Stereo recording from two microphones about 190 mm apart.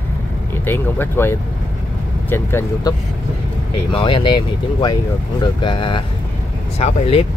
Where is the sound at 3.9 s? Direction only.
25° left (ahead or behind).